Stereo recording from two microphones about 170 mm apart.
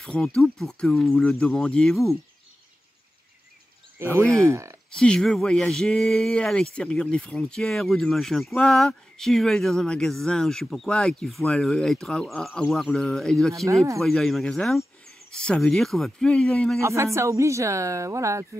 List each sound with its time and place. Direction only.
0.0 s speech: 5° left (ahead or behind)
4.3 s speech: 15° right (ahead or behind)
4.9 s speech: 5° left (ahead or behind)
16.8 s speech: 15° right (ahead or behind)